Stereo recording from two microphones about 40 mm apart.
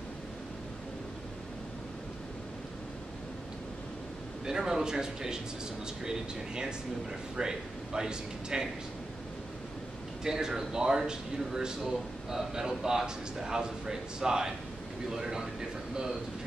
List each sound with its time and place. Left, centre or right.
4.5 s speech: centre
10.2 s speech: centre